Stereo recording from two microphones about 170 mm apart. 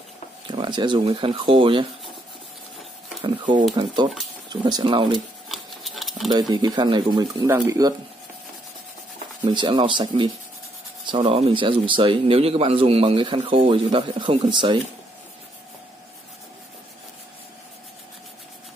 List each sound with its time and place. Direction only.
0.5 s speech: 25° right (ahead or behind)
3.2 s speech: 30° right (ahead or behind)
5.5 s sewing machine: centre (ahead or behind)
6.5 s speech: 25° right (ahead or behind)
9.4 s speech: 30° right (ahead or behind)